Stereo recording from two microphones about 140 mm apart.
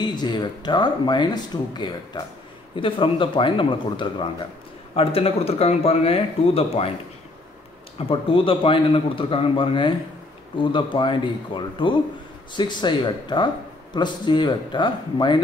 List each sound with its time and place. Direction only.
0.0 s speech: 30° left (ahead or behind)
8.1 s speech: 40° left (ahead or behind)